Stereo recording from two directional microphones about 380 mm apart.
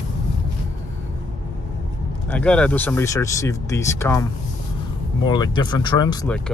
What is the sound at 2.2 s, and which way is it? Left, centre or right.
Speech, centre.